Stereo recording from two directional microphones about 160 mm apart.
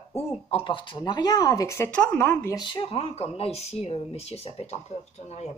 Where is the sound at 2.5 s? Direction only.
30° left (ahead or behind).